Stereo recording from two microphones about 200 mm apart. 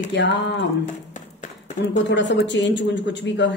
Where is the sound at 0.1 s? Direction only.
65° left (ahead or behind).